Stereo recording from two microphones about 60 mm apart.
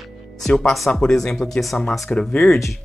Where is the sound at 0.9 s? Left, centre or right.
Centre.